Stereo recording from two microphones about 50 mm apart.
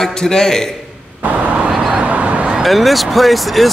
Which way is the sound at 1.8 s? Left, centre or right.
Centre.